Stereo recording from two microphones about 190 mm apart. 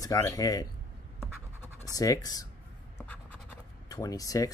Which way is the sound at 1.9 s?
20° left (ahead or behind).